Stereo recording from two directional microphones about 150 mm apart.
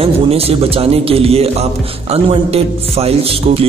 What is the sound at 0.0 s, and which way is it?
A man's voice, 40° right (ahead or behind).